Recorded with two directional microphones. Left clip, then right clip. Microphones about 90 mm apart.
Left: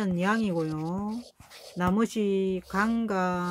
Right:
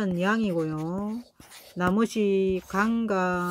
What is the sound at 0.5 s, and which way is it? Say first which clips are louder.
Speech: right 2 dB; centre (ahead or behind).